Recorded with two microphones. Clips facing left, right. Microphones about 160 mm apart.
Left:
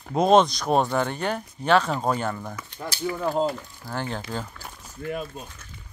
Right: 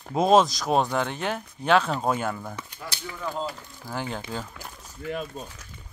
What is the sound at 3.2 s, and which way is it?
Speech, 45° left (ahead or behind).